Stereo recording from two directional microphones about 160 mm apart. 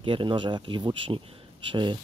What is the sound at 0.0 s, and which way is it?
Speech, 30° right (ahead or behind).